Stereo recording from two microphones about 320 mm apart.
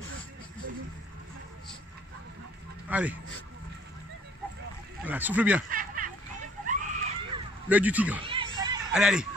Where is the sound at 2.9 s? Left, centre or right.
Centre.